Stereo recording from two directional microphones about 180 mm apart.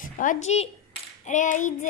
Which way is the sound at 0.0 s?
45° left (ahead or behind).